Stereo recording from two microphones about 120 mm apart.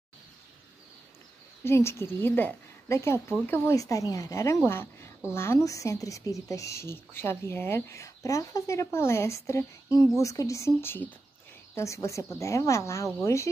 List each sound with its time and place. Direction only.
1.6 s a woman's voice: 20° left (ahead or behind)